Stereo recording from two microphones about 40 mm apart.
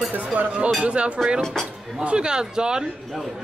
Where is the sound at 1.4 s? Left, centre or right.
Centre.